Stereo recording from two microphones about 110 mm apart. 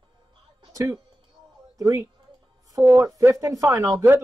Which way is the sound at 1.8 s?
35° right (ahead or behind).